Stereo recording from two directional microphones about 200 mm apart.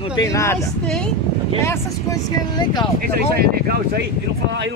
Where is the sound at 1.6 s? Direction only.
15° left (ahead or behind).